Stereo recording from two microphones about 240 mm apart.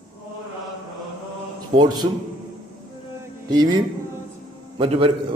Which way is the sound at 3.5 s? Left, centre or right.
Centre.